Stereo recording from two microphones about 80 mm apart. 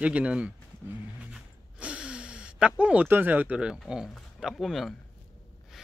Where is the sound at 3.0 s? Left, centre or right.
Right.